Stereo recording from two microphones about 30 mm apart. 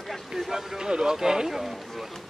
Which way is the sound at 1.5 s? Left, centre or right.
Centre.